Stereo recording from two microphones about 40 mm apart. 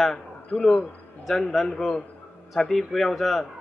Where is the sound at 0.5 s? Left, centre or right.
Left.